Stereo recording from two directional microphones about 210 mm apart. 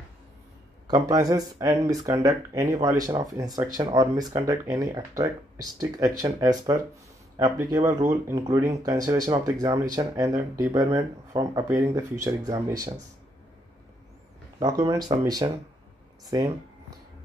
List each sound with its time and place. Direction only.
1.0 s speech: 15° right (ahead or behind)
14.6 s speech: 15° right (ahead or behind)